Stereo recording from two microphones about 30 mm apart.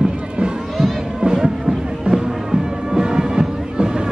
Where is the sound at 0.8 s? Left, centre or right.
Centre.